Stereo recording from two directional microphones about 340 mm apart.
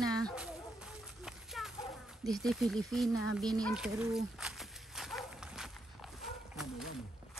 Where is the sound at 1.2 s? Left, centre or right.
Centre.